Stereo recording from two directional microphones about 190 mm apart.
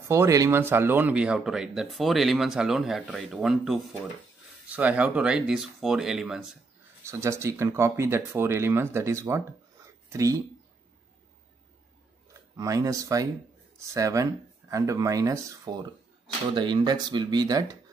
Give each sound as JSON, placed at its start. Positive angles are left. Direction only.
{"t": 0.1, "sound": "speech", "side_deg": -15}
{"t": 7.1, "sound": "speech", "side_deg": -15}
{"t": 12.5, "sound": "speech", "side_deg": -15}